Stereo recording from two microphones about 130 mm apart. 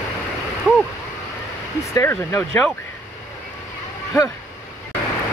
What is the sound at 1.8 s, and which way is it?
Speech, 20° left (ahead or behind).